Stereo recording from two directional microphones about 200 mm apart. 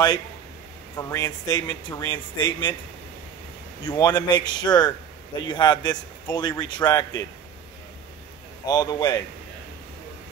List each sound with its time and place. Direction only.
0.9 s a man's voice: 15° left (ahead or behind)
3.8 s a man's voice: 20° left (ahead or behind)
8.6 s a man's voice: 20° left (ahead or behind)